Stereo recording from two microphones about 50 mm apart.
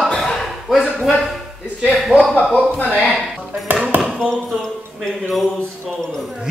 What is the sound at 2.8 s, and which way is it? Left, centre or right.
Speech, left.